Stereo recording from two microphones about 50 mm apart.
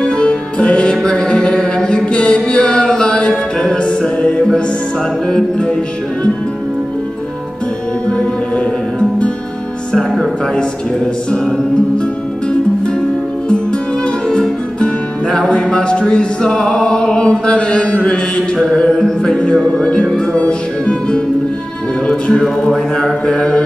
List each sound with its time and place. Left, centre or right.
0.0 s music: centre
8.1 s music: centre
13.5 s music: centre
22.0 s speech: centre